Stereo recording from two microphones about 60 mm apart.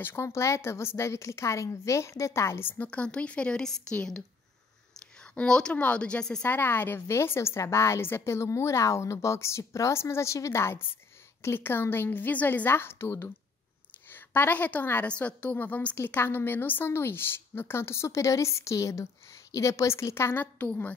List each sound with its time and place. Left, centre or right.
0.0 s a woman's voice: left
2.8 s a woman's voice: centre
5.2 s a woman's voice: centre
6.4 s a woman's voice: left
12.6 s a woman's voice: left
20.3 s a woman's voice: left